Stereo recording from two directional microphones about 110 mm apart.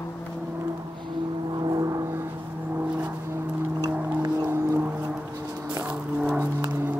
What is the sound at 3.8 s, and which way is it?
Music, 40° right (ahead or behind).